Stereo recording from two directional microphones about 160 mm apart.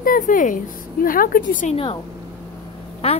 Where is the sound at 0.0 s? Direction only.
60° left (ahead or behind).